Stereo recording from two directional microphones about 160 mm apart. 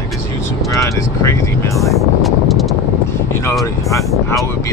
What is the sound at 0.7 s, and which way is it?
Vehicle, 20° left (ahead or behind).